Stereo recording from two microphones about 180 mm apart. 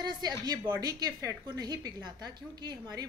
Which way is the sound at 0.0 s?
25° right (ahead or behind).